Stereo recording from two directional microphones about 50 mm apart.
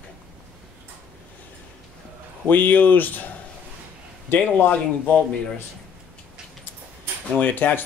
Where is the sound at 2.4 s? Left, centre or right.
Left.